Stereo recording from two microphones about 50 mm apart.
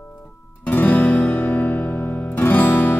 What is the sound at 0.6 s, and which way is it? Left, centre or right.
Music, left.